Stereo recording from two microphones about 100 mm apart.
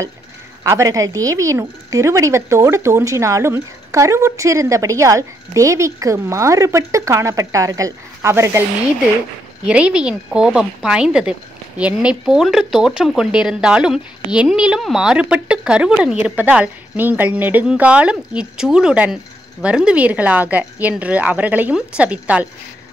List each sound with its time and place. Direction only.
0.7 s speech: 30° right (ahead or behind)
9.7 s speech: 10° right (ahead or behind)